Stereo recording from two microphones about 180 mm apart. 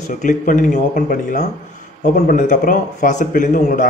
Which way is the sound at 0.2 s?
45° left (ahead or behind).